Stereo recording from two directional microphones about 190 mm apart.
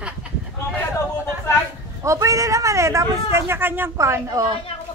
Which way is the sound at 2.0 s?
15° right (ahead or behind).